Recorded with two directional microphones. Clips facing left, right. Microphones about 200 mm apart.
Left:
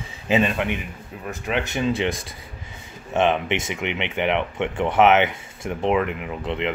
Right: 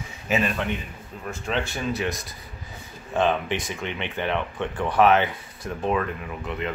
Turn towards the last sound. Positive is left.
turn(degrees=25)  # may be behind; listen again after turning